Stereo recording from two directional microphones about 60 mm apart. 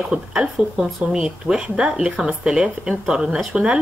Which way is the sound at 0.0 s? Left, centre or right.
Centre.